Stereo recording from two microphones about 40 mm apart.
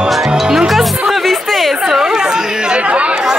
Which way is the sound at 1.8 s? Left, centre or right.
Centre.